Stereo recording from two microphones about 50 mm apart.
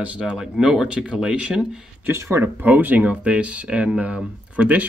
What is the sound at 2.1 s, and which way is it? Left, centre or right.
Speech, right.